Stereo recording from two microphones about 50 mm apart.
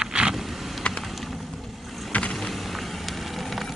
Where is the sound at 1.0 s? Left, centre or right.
Centre.